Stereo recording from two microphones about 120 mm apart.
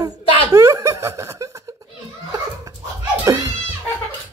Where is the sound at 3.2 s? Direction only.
30° right (ahead or behind).